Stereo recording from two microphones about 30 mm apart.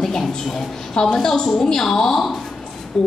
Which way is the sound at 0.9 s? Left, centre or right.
Left.